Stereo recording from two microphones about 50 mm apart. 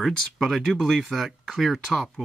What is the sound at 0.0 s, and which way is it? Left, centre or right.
Speech, centre.